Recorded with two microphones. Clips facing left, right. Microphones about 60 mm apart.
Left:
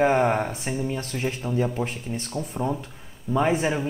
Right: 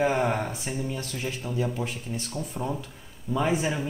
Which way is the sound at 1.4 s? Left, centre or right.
Left.